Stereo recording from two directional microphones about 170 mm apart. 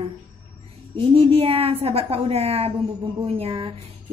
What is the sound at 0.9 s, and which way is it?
Speech, 35° right (ahead or behind).